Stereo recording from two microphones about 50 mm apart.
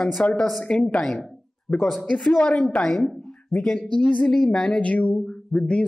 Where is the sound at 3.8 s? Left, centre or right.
Left.